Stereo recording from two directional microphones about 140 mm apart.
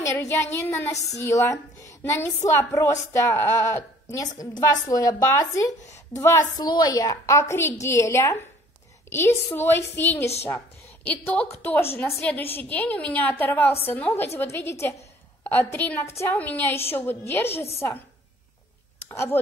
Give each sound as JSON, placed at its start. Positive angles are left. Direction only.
{"t": 0.0, "sound": "a woman's voice", "side_deg": 20}
{"t": 19.0, "sound": "speech", "side_deg": 20}